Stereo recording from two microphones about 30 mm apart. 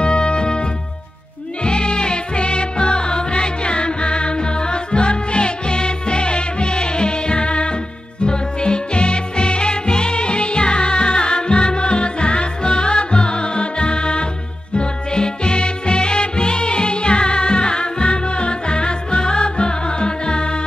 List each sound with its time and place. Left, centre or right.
0.0 s music: left